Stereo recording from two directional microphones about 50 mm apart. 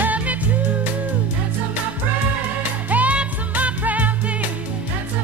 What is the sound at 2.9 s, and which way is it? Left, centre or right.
Music, right.